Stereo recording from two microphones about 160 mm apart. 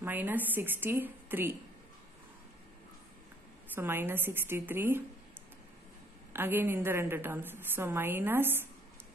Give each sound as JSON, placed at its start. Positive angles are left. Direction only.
{"t": 0.0, "sound": "a woman's voice", "side_deg": -10}
{"t": 3.7, "sound": "a woman's voice", "side_deg": -15}
{"t": 6.3, "sound": "a woman's voice", "side_deg": -10}